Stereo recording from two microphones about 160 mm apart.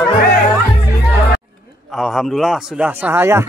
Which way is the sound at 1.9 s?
Centre (ahead or behind).